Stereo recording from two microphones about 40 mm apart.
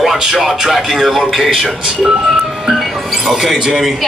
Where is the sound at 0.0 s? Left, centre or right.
Centre.